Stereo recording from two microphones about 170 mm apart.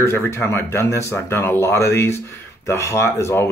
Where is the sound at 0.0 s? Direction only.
15° left (ahead or behind).